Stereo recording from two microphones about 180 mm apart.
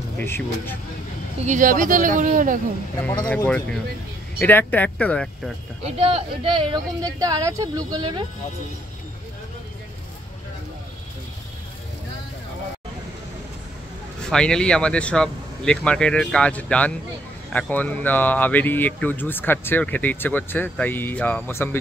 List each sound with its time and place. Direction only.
0.2 s speech: 15° left (ahead or behind)
1.4 s speech: 45° right (ahead or behind)
3.1 s speech: 15° left (ahead or behind)
5.9 s speech: 30° right (ahead or behind)
14.3 s speech: 5° left (ahead or behind)